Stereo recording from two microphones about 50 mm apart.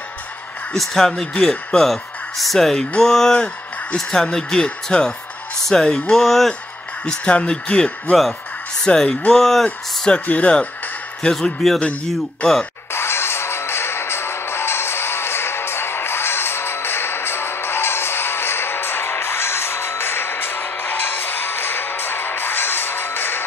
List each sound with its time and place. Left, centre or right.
0.7 s a man's voice: centre
7.2 s speech: left
8.1 s a man's voice: centre
8.8 s speech: centre
10.2 s speech: left
11.2 s a man's voice: centre
12.9 s music: left